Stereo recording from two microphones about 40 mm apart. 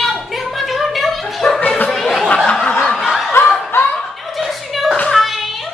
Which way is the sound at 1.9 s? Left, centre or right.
Centre.